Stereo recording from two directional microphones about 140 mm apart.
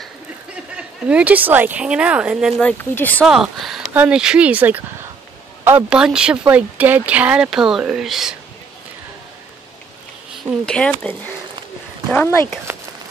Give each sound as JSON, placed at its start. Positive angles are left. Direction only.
{"t": 0.7, "sound": "speech", "side_deg": -10}
{"t": 2.6, "sound": "speech", "side_deg": 15}
{"t": 3.3, "sound": "speech", "side_deg": 0}
{"t": 10.6, "sound": "speech", "side_deg": 5}
{"t": 12.7, "sound": "a sound", "side_deg": -20}